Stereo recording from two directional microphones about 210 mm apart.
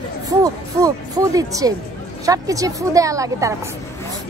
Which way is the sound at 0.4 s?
15° right (ahead or behind).